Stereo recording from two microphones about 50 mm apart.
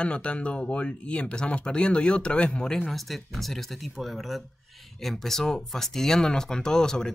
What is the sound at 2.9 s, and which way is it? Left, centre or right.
Speech, centre.